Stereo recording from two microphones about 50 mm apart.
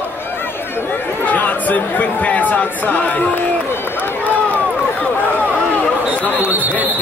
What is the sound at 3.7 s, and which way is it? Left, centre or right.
Run, left.